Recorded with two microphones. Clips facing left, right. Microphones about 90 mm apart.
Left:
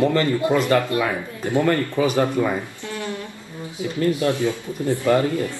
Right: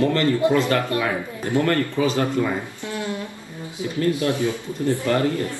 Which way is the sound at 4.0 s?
20° left (ahead or behind).